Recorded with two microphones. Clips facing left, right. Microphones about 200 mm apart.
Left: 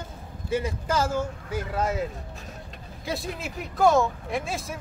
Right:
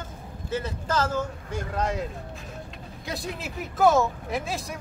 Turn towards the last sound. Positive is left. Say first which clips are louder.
# even
turn(degrees=0)  # may be behind; listen again after turning